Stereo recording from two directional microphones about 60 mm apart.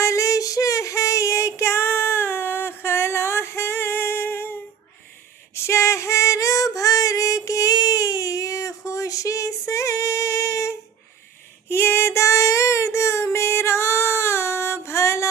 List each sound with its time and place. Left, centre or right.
0.0 s child singing: left
5.5 s female singing: left
11.7 s child singing: left